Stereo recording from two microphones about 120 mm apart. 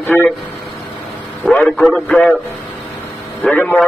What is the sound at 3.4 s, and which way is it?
Speech, 10° left (ahead or behind).